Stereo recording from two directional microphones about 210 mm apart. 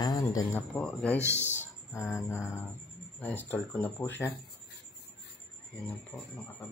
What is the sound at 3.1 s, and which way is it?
Speech, 10° left (ahead or behind).